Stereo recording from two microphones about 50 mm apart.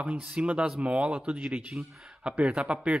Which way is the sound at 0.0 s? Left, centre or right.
Right.